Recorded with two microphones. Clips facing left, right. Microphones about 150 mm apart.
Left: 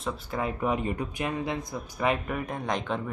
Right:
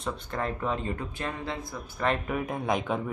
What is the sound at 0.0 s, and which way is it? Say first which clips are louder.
Speech: left 1 dB; 5° left (ahead or behind).